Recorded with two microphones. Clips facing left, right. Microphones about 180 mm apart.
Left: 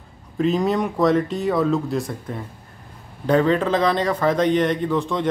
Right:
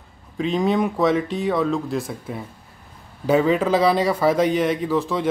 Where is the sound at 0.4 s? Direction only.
Centre (ahead or behind).